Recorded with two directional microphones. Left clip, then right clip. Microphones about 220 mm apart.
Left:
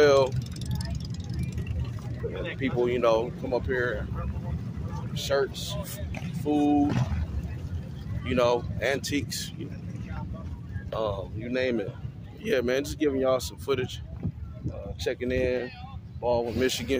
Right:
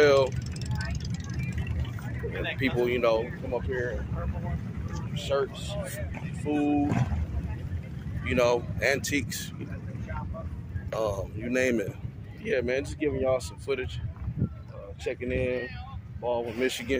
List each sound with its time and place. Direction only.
0.0 s vehicle: 10° left (ahead or behind)
0.4 s vehicle: 90° left
2.6 s speech: 5° left (ahead or behind)
3.4 s speech: 25° left (ahead or behind)
5.1 s speech: 30° left (ahead or behind)
8.3 s speech: 5° left (ahead or behind)
10.9 s speech: centre (ahead or behind)
12.4 s speech: 20° left (ahead or behind)
15.0 s speech: 30° left (ahead or behind)